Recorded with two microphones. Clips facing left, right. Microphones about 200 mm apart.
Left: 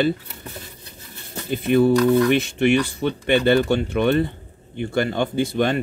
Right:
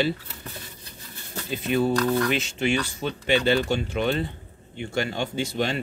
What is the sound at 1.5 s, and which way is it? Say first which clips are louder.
A man's voice: left 7 dB; 60° left (ahead or behind).